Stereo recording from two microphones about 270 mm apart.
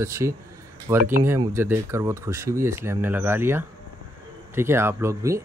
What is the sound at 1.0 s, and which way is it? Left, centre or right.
Speech, right.